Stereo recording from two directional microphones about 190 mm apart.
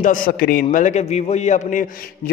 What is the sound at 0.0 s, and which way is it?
A man's voice, 45° left (ahead or behind).